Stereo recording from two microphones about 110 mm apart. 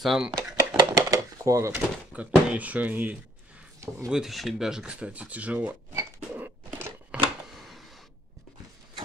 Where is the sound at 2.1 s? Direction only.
15° right (ahead or behind).